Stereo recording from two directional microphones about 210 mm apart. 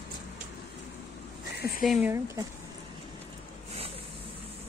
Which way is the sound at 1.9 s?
5° right (ahead or behind).